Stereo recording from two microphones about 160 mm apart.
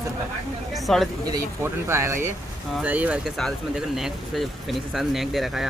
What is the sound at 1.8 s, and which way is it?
Speech, 15° right (ahead or behind).